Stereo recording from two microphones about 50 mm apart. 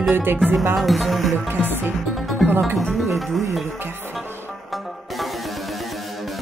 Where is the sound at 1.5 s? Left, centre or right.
Right.